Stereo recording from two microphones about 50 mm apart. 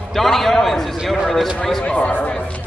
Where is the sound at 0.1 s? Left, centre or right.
Centre.